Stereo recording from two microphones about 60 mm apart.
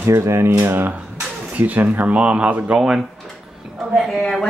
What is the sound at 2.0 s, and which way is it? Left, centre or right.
Speech, right.